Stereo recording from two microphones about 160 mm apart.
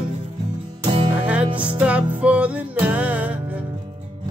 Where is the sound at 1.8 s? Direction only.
10° right (ahead or behind).